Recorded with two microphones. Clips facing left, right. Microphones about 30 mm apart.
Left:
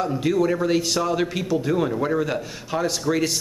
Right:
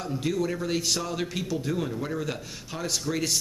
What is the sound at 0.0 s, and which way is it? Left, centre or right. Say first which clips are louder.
A man's voice: left 7 dB; centre.